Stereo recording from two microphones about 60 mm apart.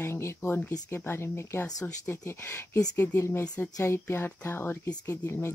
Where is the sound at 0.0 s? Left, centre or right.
Left.